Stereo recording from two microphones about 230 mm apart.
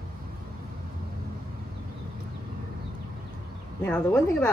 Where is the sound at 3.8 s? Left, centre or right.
Centre.